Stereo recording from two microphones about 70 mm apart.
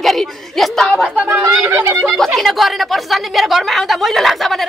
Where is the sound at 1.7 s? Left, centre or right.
Right.